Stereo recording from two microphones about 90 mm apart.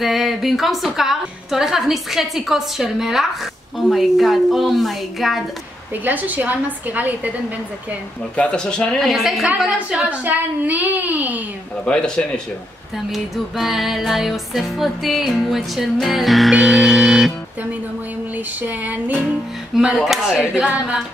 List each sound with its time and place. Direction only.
0.0 s music: centre (ahead or behind)
6.0 s a woman's voice: 20° right (ahead or behind)
8.4 s a woman's voice: 10° left (ahead or behind); by 11.4 s 20° right (ahead or behind)
11.8 s speech: 10° left (ahead or behind)
13.1 s music: centre (ahead or behind)
18.6 s female singing: 20° right (ahead or behind)
19.7 s music: 5° right (ahead or behind)
20.5 s a woman's voice: 10° right (ahead or behind)